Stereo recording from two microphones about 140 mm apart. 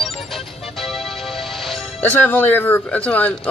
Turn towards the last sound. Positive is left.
turn(degrees=10)  # may be behind; listen again after turning